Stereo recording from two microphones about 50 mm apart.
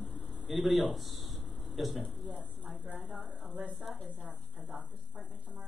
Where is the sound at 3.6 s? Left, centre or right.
Centre.